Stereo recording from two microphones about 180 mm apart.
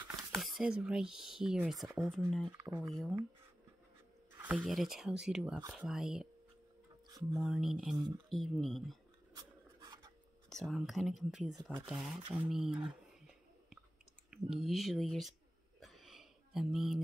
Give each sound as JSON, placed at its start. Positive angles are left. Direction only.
{"t": 0.4, "sound": "speech", "side_deg": 0}
{"t": 2.6, "sound": "speech", "side_deg": -10}
{"t": 2.9, "sound": "speech", "side_deg": 5}
{"t": 4.4, "sound": "speech", "side_deg": -5}
{"t": 7.3, "sound": "speech", "side_deg": 0}
{"t": 9.3, "sound": "a sound", "side_deg": -25}
{"t": 10.5, "sound": "speech", "side_deg": 0}
{"t": 14.3, "sound": "speech", "side_deg": 0}
{"t": 15.8, "sound": "a sound", "side_deg": 0}